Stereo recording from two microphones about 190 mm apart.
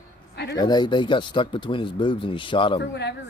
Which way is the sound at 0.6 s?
20° left (ahead or behind).